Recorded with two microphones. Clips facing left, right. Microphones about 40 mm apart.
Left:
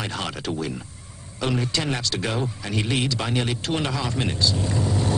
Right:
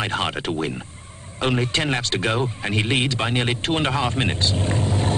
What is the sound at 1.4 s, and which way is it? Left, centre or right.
A man's voice, right.